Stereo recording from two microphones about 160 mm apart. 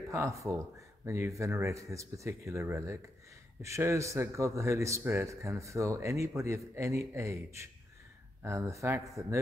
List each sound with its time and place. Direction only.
0.1 s a man's voice: 20° right (ahead or behind)